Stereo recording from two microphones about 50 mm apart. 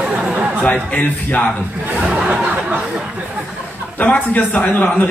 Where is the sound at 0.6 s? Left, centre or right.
Left.